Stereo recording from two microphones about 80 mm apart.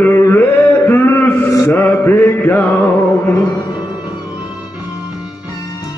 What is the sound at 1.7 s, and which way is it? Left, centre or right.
Mantra, left.